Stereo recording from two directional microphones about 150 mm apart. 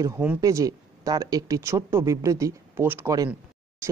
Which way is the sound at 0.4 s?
20° right (ahead or behind).